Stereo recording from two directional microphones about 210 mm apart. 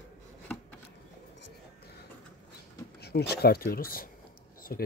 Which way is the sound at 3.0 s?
50° left (ahead or behind).